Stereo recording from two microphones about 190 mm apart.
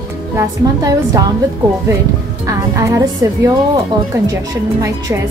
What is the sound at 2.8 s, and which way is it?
Speech, 15° right (ahead or behind).